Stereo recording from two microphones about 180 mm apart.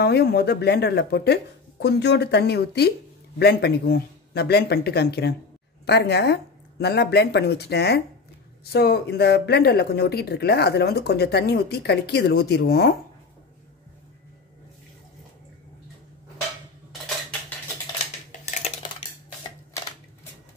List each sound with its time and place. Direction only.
0.0 s speech: 60° left (ahead or behind)
18.4 s dishes: 40° left (ahead or behind)